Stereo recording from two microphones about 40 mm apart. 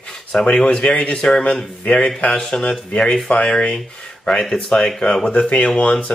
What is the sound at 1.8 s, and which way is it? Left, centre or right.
Speech, left.